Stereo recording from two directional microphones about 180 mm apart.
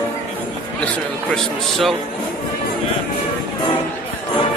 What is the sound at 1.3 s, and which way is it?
Speech, centre (ahead or behind).